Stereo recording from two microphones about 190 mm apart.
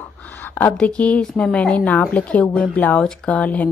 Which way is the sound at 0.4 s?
10° left (ahead or behind).